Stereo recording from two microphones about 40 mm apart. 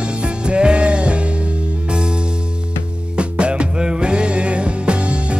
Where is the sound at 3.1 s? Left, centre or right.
Right.